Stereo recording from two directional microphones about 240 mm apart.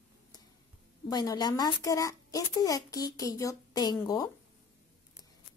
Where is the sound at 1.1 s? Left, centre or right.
Centre.